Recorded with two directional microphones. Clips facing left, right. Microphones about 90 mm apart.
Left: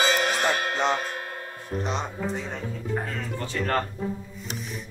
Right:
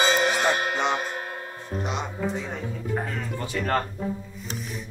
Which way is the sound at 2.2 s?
Centre (ahead or behind).